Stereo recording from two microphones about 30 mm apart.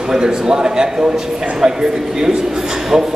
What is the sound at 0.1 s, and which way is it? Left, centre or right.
A man's voice, right.